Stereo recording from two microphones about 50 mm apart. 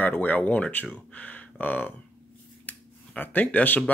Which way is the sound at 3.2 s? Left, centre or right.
Left.